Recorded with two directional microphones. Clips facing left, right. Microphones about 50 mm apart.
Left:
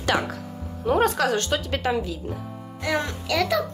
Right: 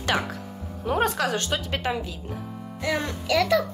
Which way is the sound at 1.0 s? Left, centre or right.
Right.